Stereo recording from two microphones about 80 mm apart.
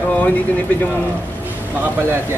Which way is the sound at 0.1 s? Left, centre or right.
Left.